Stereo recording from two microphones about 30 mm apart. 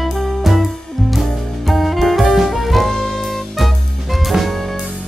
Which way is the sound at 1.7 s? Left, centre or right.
Centre.